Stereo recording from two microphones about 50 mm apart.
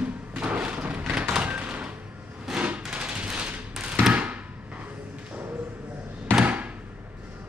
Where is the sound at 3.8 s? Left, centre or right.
Right.